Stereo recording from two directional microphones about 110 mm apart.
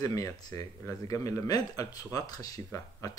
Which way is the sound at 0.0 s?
35° left (ahead or behind).